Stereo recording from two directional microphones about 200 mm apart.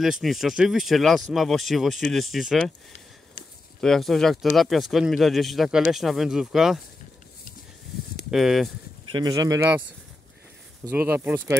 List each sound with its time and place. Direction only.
0.0 s speech: centre (ahead or behind)
3.8 s speech: centre (ahead or behind)
8.3 s speech: centre (ahead or behind)
9.1 s speech: 20° right (ahead or behind)
10.9 s speech: 10° right (ahead or behind)